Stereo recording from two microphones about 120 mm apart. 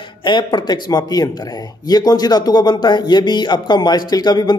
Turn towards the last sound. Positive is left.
turn(degrees=35)  # may be behind; listen again after turning